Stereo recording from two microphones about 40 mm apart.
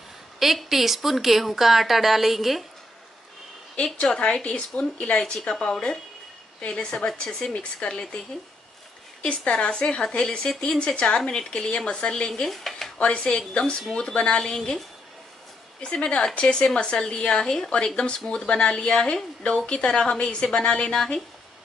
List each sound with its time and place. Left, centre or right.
0.4 s a woman's voice: centre
3.7 s a woman's voice: left
9.2 s speech: left
12.4 s dishes: centre
13.0 s a woman's voice: left
15.8 s speech: left